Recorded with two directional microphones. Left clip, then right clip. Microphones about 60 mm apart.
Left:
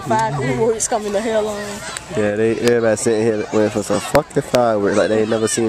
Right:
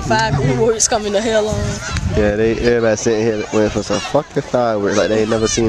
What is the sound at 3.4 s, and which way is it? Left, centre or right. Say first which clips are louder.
Speech: right 1 dB; right.